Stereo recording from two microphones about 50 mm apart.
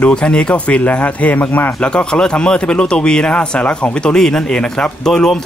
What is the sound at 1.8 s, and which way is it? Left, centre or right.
Speech, centre.